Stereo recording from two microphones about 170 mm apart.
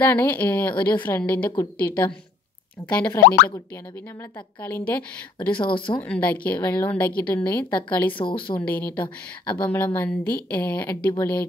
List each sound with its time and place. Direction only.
0.0 s a woman's voice: 10° left (ahead or behind)
4.6 s a woman's voice: 10° left (ahead or behind)
5.5 s speech: 30° left (ahead or behind)
5.9 s a woman's voice: 10° left (ahead or behind)
8.2 s speech: 30° left (ahead or behind)
8.5 s a woman's voice: 10° left (ahead or behind)